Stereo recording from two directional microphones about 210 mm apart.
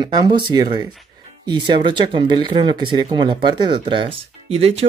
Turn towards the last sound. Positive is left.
turn(degrees=-30)  # may be behind; listen again after turning